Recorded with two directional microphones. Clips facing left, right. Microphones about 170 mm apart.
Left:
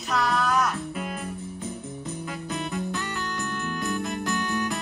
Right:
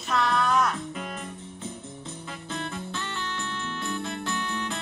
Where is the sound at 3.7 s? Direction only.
40° left (ahead or behind).